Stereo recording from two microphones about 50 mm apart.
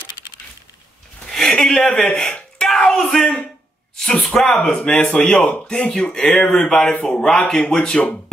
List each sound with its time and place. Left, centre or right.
1.5 s speech: centre
2.3 s a sound: centre
4.0 s speech: centre
5.5 s speech: left